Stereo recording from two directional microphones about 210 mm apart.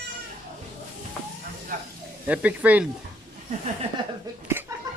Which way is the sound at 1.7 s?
40° right (ahead or behind).